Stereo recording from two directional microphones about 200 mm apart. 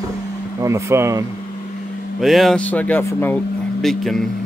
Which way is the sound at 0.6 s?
15° right (ahead or behind).